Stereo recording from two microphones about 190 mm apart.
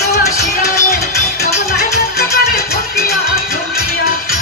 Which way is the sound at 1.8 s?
55° left (ahead or behind).